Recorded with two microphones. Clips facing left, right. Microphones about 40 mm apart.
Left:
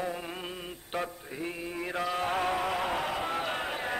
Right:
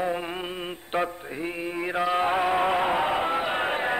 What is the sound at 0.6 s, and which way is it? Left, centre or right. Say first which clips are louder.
Mantra: right 8 dB; right.